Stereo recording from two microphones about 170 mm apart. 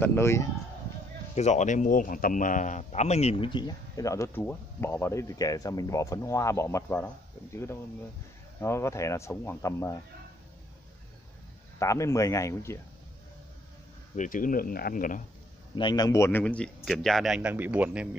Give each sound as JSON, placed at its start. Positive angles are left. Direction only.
{"t": 0.0, "sound": "speech", "side_deg": 15}
{"t": 1.3, "sound": "a man's voice", "side_deg": 40}
{"t": 8.5, "sound": "speech", "side_deg": 15}
{"t": 11.8, "sound": "a man's voice", "side_deg": 20}
{"t": 14.1, "sound": "speech", "side_deg": 50}
{"t": 15.7, "sound": "speech", "side_deg": 25}